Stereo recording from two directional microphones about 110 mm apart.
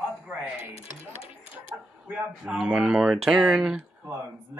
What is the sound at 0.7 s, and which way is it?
Speech, 90° right.